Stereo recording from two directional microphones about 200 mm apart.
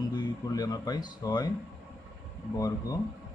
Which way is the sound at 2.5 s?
15° left (ahead or behind).